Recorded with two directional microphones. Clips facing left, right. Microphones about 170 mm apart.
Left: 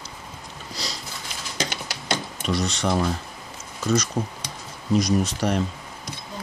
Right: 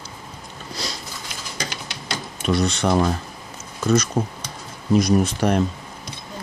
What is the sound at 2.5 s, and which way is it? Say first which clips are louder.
Speech: right 4 dB; 55° right (ahead or behind).